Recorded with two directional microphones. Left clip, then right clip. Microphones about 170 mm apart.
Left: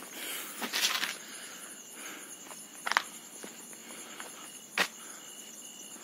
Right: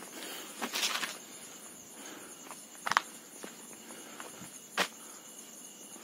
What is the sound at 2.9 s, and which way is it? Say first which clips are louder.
Walk: even; 10° left (ahead or behind).